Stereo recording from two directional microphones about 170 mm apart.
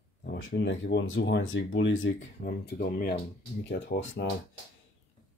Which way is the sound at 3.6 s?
90° left.